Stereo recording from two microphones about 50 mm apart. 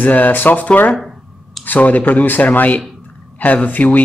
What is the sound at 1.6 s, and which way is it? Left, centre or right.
Speech, left.